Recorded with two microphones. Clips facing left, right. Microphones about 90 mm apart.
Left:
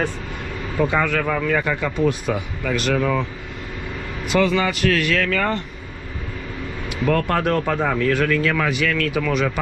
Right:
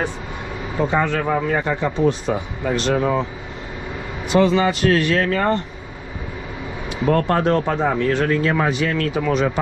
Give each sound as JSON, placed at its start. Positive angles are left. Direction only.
{"t": 0.7, "sound": "speech", "side_deg": -25}
{"t": 4.3, "sound": "speech", "side_deg": -25}
{"t": 6.9, "sound": "speech", "side_deg": -25}